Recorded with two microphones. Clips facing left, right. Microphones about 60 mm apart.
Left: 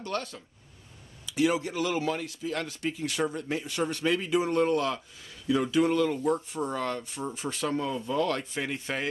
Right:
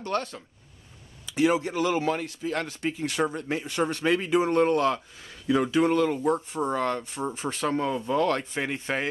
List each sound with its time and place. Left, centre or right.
0.0 s speech: right